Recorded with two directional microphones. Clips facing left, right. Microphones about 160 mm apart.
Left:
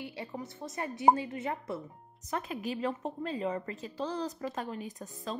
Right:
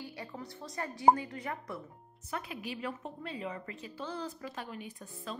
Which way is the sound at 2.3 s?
40° left (ahead or behind).